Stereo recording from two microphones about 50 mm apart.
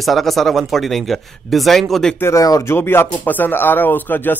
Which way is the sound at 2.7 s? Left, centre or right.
Left.